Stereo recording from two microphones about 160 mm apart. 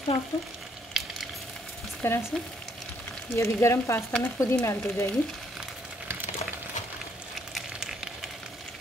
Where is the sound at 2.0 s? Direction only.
15° left (ahead or behind).